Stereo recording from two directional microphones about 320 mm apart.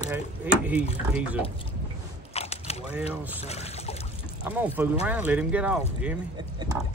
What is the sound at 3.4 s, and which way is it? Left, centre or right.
Boat, centre.